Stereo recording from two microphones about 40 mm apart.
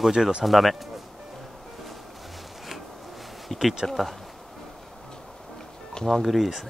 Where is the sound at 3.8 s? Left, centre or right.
Centre.